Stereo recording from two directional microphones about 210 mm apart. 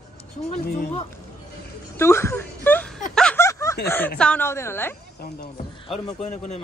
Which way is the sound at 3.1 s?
5° left (ahead or behind).